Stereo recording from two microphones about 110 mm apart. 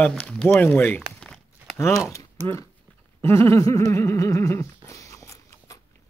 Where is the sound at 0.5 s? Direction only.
15° left (ahead or behind).